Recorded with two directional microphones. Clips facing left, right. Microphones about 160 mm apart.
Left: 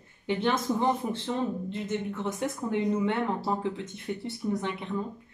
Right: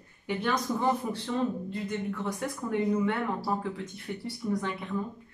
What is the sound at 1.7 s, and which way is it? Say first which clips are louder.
Speech: left 1 dB; 20° left (ahead or behind).